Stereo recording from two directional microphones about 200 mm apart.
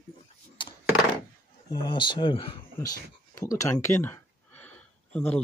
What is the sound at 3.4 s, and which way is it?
Speech, 15° left (ahead or behind).